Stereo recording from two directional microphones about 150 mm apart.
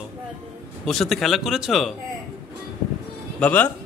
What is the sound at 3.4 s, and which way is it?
Speech, 10° left (ahead or behind).